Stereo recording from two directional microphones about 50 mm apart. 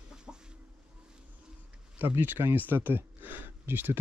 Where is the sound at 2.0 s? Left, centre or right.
Right.